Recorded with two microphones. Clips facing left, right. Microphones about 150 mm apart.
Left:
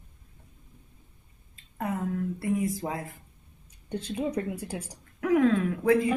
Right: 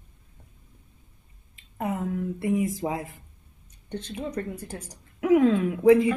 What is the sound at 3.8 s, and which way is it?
A woman's voice, 10° left (ahead or behind).